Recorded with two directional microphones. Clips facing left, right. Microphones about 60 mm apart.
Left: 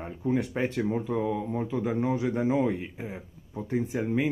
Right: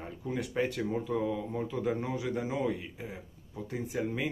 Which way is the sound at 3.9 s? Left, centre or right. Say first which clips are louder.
Left 4 dB; centre.